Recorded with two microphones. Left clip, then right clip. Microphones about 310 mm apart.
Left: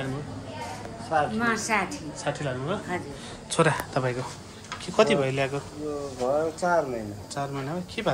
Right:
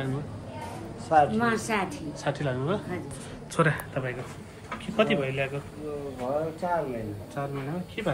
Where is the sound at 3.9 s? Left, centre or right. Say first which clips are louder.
Left 5 dB; left.